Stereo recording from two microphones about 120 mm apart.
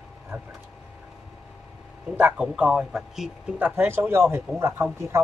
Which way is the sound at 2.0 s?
10° right (ahead or behind).